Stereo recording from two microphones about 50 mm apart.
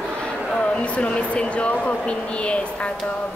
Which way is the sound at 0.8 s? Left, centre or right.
Left.